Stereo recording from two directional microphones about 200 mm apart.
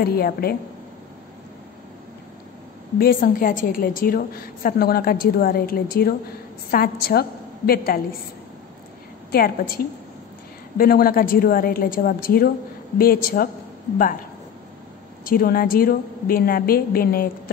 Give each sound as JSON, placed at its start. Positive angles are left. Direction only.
{"t": 0.0, "sound": "a woman's voice", "side_deg": 50}
{"t": 3.0, "sound": "a woman's voice", "side_deg": 45}
{"t": 9.3, "sound": "a woman's voice", "side_deg": 50}
{"t": 15.2, "sound": "a woman's voice", "side_deg": 45}